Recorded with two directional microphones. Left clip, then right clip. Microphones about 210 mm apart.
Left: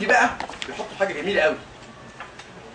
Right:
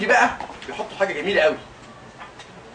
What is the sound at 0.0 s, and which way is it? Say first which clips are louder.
Speech: right 1 dB; centre (ahead or behind).